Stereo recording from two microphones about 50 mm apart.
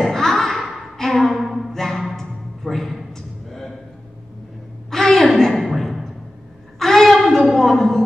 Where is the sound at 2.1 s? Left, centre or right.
Centre.